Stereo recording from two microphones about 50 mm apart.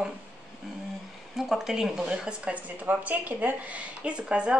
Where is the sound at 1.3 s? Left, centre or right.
Centre.